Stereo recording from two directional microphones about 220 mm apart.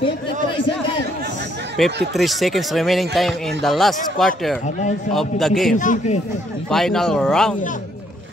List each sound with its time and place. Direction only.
1.8 s speech: centre (ahead or behind)
5.8 s speech: 35° left (ahead or behind)
6.7 s speech: centre (ahead or behind)